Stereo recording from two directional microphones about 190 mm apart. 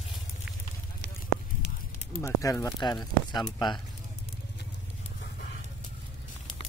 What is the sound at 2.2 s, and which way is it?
Speech, 15° left (ahead or behind).